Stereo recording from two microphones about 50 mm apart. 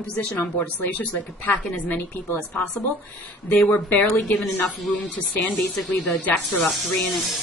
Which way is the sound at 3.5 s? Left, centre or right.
Left.